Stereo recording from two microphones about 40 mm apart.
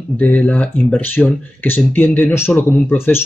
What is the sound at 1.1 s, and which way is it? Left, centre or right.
Speech, left.